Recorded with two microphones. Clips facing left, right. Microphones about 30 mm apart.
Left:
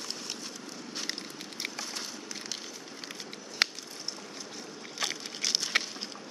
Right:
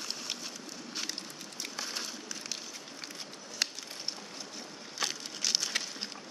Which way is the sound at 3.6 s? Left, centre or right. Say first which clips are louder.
Left 6 dB; left.